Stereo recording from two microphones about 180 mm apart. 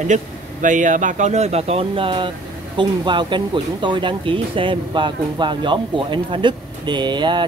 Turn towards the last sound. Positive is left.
turn(degrees=-25)  # may be behind; listen again after turning